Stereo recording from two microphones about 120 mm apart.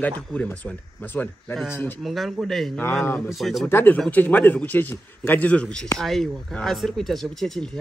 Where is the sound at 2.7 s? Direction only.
15° left (ahead or behind).